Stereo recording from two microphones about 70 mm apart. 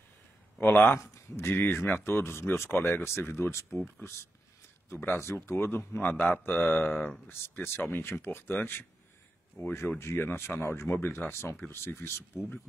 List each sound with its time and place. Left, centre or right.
0.6 s speech: left
0.9 s speech: left
1.6 s speech: left
4.9 s speech: left